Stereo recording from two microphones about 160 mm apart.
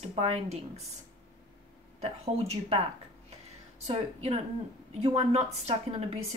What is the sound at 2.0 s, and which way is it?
Speech, 40° right (ahead or behind).